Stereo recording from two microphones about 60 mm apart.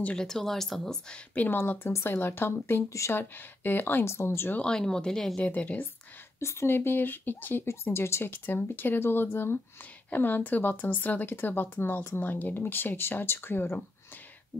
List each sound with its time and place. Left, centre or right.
0.2 s speech: centre
1.3 s speech: left
4.6 s speech: centre
5.4 s speech: left
6.4 s speech: left
7.6 s speech: left
10.0 s speech: left